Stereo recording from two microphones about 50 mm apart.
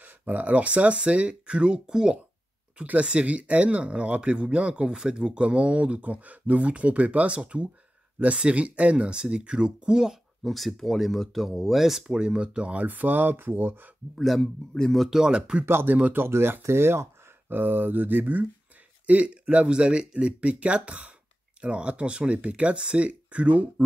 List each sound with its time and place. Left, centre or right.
0.0 s speech: right; by 10.1 s centre
10.4 s speech: centre; by 12.8 s right
12.8 s speech: right
14.1 s speech: centre
14.4 s a man's voice: centre
15.0 s speech: centre
15.6 s speech: right
17.5 s speech: right